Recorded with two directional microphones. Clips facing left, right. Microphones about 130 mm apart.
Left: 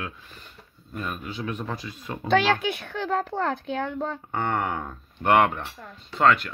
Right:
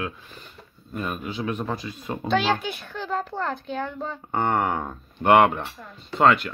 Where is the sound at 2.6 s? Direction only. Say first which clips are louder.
Left 3 dB; 65° left (ahead or behind).